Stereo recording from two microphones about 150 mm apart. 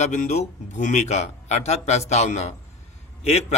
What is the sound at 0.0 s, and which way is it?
A man's voice, 50° left (ahead or behind).